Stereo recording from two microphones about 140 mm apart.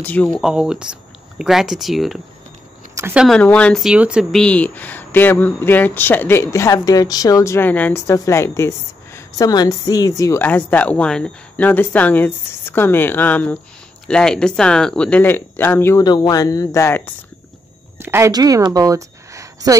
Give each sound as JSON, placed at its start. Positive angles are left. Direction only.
{"t": 0.0, "sound": "speech", "side_deg": 10}
{"t": 0.4, "sound": "speech", "side_deg": -5}
{"t": 2.9, "sound": "a sound", "side_deg": -20}
{"t": 3.3, "sound": "speech", "side_deg": 10}
{"t": 3.8, "sound": "speech", "side_deg": -5}
{"t": 16.0, "sound": "speech", "side_deg": 30}
{"t": 17.9, "sound": "a sound", "side_deg": -15}
{"t": 18.3, "sound": "a woman's voice", "side_deg": -25}